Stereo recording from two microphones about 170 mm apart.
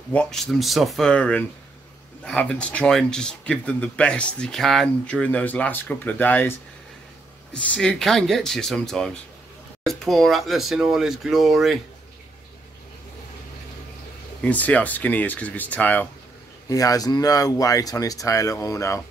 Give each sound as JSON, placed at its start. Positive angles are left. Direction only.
{"t": 0.1, "sound": "speech", "side_deg": 5}
{"t": 7.5, "sound": "speech", "side_deg": 5}
{"t": 14.4, "sound": "speech", "side_deg": 10}
{"t": 16.6, "sound": "speech", "side_deg": 20}